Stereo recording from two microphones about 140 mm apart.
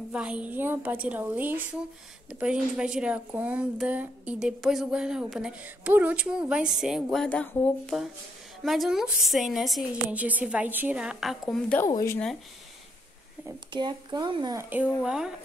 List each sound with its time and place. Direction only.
0.1 s a woman's voice: 10° right (ahead or behind)
13.7 s speech: 30° right (ahead or behind)
14.6 s a woman's voice: 10° right (ahead or behind)